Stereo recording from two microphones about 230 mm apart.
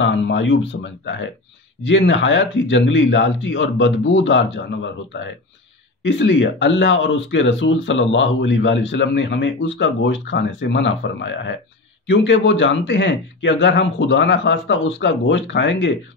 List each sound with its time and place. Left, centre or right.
0.0 s speech: left
6.0 s speech: left